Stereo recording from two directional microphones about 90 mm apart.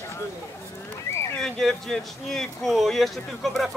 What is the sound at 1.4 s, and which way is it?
Speech, 5° left (ahead or behind).